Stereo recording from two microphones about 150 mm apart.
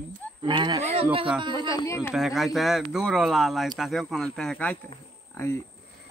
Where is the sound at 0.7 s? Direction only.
40° right (ahead or behind).